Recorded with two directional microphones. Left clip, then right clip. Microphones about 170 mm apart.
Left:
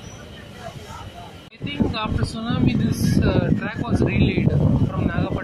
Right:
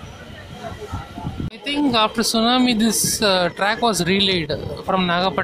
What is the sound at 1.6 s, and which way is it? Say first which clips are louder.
Speech: right 8 dB; 25° right (ahead or behind).